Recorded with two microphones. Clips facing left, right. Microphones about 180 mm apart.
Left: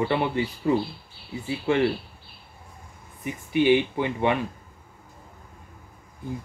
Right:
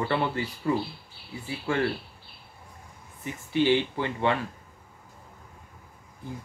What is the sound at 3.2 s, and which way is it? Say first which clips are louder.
Speech: left 2 dB; 15° left (ahead or behind).